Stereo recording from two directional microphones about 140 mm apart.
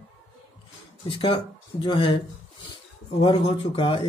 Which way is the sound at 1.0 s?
40° left (ahead or behind).